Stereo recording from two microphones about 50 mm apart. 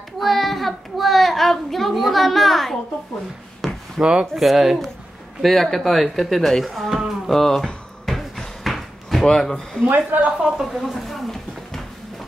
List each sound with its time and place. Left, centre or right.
0.2 s child singing: centre
3.6 s a sound: centre
4.0 s speech: right
4.4 s speech: centre
8.0 s basketball bounce: centre
9.2 s speech: centre
9.8 s speech: right
10.3 s speech: centre
10.7 s a sound: centre